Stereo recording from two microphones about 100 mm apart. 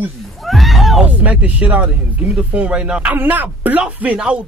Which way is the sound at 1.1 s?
15° right (ahead or behind).